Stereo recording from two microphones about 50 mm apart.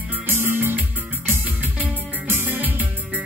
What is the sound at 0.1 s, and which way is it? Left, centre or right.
Music, right.